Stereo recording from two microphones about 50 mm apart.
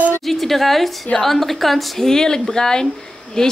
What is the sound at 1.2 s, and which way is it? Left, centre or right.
A woman's voice, centre.